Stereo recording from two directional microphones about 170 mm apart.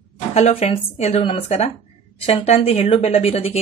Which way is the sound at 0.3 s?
40° left (ahead or behind).